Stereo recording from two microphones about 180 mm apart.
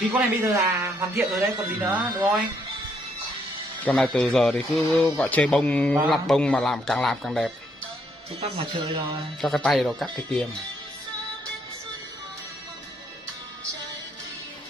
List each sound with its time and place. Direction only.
0.1 s a man's voice: 15° right (ahead or behind)
3.8 s a man's voice: 5° left (ahead or behind)
8.4 s speech: 35° right (ahead or behind)
9.4 s a man's voice: centre (ahead or behind)